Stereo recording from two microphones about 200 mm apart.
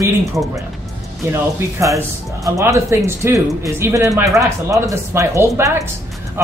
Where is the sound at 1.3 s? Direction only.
15° right (ahead or behind).